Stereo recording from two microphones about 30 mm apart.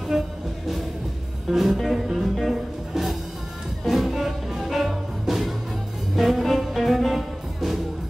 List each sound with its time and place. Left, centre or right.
0.1 s music: centre
1.5 s music: centre
2.1 s music: centre